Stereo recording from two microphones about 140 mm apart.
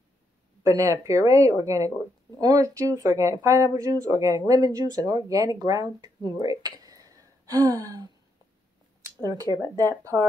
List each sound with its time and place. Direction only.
0.7 s speech: 25° right (ahead or behind)
9.2 s speech: 25° right (ahead or behind)